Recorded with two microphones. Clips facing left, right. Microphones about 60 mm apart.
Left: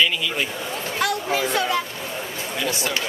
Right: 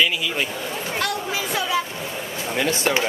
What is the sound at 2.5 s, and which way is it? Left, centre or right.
Speech, right.